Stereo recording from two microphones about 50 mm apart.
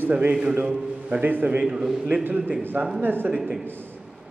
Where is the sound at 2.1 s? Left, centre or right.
Right.